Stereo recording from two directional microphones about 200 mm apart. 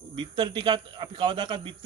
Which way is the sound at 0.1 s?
25° right (ahead or behind).